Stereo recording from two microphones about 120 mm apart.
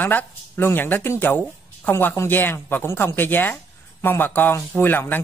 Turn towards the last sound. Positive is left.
turn(degrees=15)  # may be behind; listen again after turning